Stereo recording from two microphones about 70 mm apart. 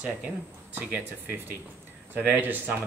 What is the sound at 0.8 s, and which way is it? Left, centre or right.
Speech, right.